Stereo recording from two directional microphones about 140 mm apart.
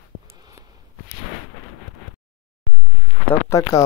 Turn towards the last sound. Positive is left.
turn(degrees=20)  # may be behind; listen again after turning